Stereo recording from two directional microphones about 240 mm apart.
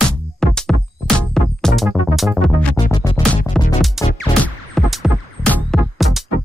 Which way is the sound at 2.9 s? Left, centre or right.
Centre.